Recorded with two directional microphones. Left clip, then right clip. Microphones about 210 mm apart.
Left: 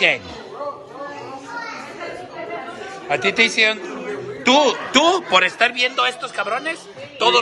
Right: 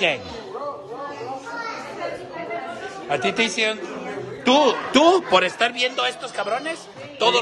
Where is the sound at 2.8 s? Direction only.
15° right (ahead or behind).